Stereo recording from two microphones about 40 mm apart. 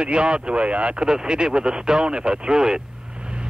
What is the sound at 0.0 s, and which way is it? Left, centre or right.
Speech, right.